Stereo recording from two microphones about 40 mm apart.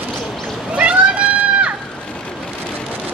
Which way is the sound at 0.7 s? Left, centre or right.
Right.